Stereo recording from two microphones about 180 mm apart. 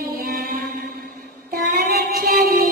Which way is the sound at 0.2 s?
55° right (ahead or behind).